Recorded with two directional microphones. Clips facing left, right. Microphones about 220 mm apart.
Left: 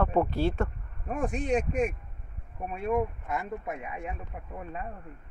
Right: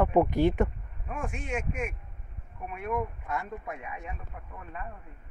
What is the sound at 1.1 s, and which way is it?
Speech, 35° left (ahead or behind).